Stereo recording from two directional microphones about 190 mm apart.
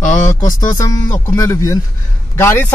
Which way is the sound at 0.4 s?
45° left (ahead or behind).